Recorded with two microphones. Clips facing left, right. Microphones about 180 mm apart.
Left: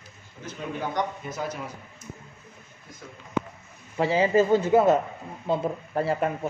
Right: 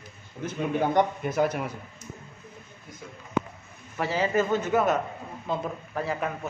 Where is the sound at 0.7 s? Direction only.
55° right (ahead or behind).